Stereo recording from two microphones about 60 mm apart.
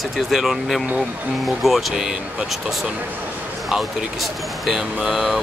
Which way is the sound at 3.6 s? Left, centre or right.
Centre.